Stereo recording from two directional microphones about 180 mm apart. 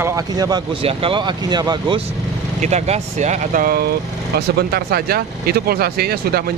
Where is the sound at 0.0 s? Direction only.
20° right (ahead or behind).